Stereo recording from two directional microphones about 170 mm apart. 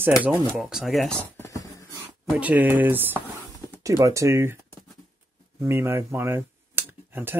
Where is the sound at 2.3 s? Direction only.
10° right (ahead or behind).